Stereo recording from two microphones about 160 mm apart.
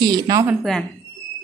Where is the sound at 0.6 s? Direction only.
Centre (ahead or behind).